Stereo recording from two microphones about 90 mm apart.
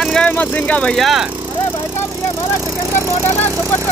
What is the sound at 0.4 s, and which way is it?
Speech, 15° left (ahead or behind).